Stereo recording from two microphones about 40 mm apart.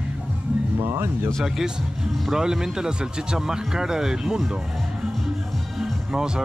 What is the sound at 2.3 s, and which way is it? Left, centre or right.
Speech, centre.